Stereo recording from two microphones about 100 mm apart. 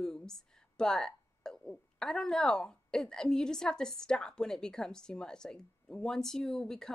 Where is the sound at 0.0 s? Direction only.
5° left (ahead or behind).